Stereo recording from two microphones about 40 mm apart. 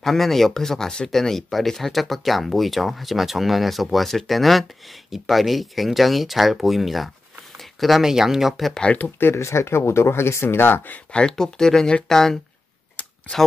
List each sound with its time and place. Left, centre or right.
0.0 s speech: centre
7.5 s a sound: centre
8.0 s speech: centre
8.9 s speech: left
9.2 s speech: left
11.1 s speech: left
11.3 s speech: centre
13.0 s a sound: left